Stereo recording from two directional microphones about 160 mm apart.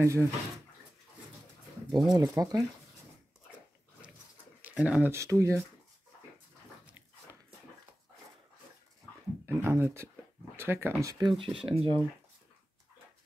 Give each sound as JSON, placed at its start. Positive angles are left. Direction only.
{"t": 0.0, "sound": "speech", "side_deg": -15}
{"t": 1.9, "sound": "speech", "side_deg": -25}
{"t": 4.6, "sound": "speech", "side_deg": -10}
{"t": 9.6, "sound": "speech", "side_deg": -15}